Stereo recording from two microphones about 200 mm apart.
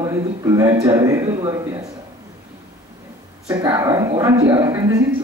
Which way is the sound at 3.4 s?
15° right (ahead or behind).